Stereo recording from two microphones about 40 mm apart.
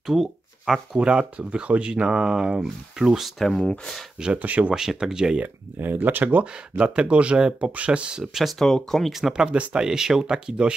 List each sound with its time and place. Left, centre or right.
0.0 s a sound: centre
0.9 s speech: right
3.5 s speech: centre
4.3 s speech: right
4.7 s speech: centre
5.4 s speech: right
6.8 s speech: right
8.2 s speech: centre
8.5 s speech: centre
9.4 s speech: right
9.8 s speech: centre